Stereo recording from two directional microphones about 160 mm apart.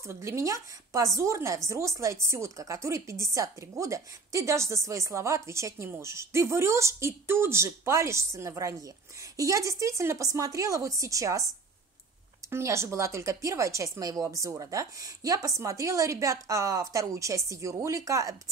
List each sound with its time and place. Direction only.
0.0 s a woman's voice: 15° right (ahead or behind)
12.4 s a woman's voice: 15° right (ahead or behind)